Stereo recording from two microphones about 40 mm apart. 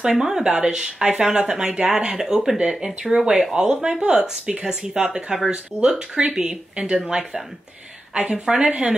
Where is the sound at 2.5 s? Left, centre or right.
Right.